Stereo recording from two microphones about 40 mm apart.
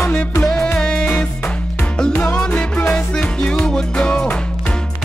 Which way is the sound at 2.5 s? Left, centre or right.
Left.